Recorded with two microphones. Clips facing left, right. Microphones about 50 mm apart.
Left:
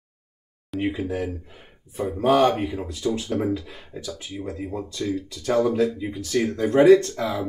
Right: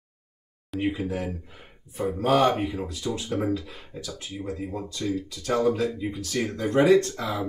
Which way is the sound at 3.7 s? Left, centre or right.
Centre.